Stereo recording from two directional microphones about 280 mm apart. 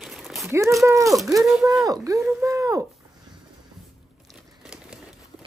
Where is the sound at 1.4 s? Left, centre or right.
Centre.